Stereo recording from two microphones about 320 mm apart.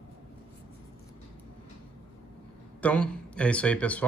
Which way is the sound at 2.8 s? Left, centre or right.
Centre.